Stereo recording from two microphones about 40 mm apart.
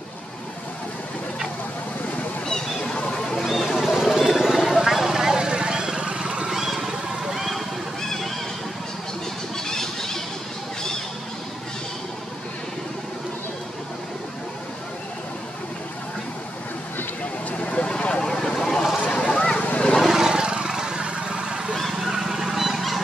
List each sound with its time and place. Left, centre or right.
2.8 s a sound: left
3.3 s a sound: centre; by 6.5 s right
6.5 s vehicle: centre
8.0 s honk: centre
9.7 s a sound: centre
17.5 s vehicle: left
18.4 s vehicle: centre
18.8 s boat: centre
19.1 s boat: left
20.0 s vehicle: centre
21.9 s goose: centre